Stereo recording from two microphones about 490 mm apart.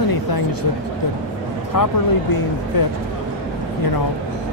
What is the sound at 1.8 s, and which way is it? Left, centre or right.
Speech, left.